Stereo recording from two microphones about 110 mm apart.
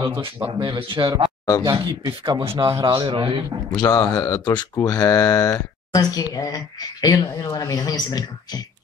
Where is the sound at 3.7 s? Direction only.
35° left (ahead or behind).